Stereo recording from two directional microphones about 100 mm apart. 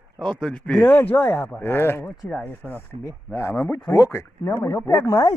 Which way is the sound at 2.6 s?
10° right (ahead or behind).